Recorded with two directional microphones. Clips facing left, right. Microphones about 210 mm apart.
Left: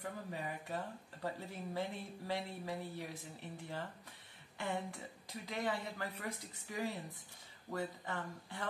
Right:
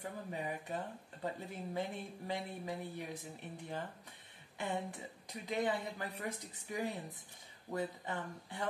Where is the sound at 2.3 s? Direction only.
20° right (ahead or behind).